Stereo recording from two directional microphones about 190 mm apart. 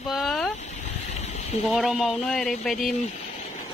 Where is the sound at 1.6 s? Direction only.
Centre (ahead or behind).